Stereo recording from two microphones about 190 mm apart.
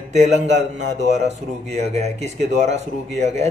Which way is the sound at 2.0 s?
35° right (ahead or behind).